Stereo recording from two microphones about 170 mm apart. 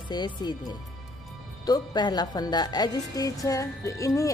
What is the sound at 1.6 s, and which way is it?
A woman's voice, 25° left (ahead or behind).